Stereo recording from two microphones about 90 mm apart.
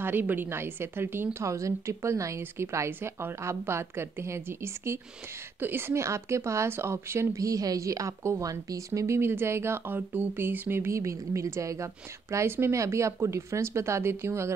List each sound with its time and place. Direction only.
0.0 s a woman's voice: 25° right (ahead or behind)